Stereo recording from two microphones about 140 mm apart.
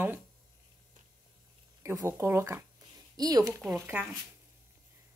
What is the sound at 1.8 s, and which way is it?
Speech, 20° right (ahead or behind).